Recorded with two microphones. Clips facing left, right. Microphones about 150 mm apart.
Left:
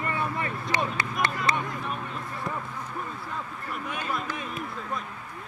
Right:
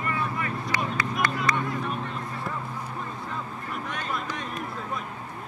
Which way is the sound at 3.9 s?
5° left (ahead or behind).